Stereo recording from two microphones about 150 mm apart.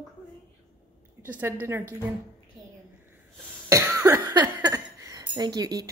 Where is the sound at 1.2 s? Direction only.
10° right (ahead or behind).